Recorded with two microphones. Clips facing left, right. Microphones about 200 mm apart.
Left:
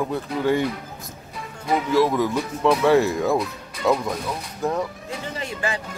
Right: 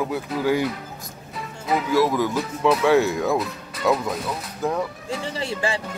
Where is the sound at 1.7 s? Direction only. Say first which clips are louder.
Left 1 dB; centre (ahead or behind).